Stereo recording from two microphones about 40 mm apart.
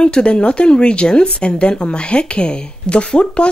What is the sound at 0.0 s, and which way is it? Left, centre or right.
Speech, left.